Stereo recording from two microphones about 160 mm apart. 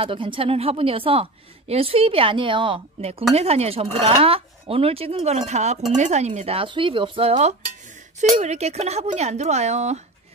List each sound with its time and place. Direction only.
0.0 s a woman's voice: 35° right (ahead or behind)